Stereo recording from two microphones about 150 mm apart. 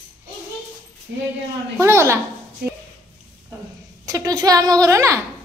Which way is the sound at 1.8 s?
20° right (ahead or behind).